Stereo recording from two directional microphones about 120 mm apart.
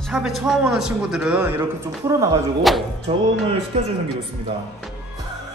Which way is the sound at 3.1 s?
55° right (ahead or behind).